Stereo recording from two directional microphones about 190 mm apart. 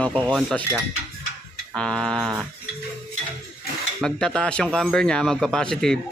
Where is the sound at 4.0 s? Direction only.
5° left (ahead or behind).